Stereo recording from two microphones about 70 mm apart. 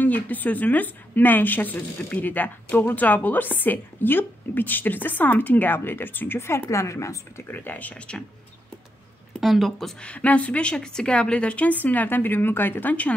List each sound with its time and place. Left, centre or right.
0.0 s a woman's voice: left
7.4 s a woman's voice: left
9.4 s speech: centre
10.0 s a woman's voice: centre